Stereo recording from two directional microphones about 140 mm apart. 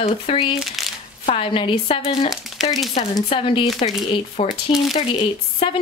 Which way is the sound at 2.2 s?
Centre (ahead or behind).